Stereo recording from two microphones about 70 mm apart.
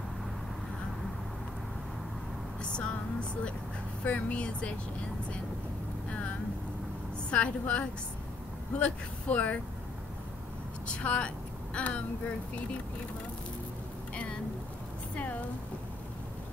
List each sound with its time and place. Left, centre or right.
2.6 s vehicle: centre
4.0 s speech: left
6.0 s vehicle: centre
8.7 s speech: left
10.9 s speech: centre